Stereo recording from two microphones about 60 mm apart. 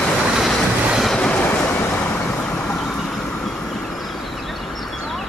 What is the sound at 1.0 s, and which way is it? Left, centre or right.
Train, centre.